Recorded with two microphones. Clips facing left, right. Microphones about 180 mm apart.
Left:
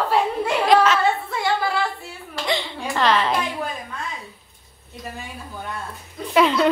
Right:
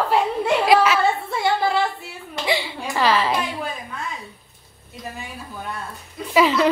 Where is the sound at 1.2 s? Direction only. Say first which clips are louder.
Right 2 dB; 25° right (ahead or behind).